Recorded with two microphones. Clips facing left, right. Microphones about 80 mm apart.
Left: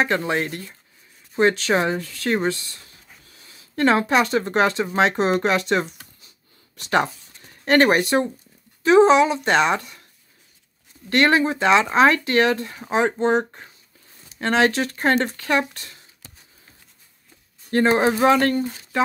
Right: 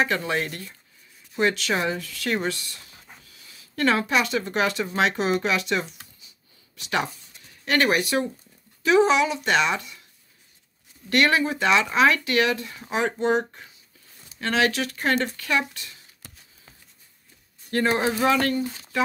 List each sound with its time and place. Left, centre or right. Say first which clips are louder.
0.0 s speech: left 3 dB; left
1.3 s speech: left 5 dB; left
11.1 s speech: left 3 dB; left
17.8 s speech: left 5 dB; left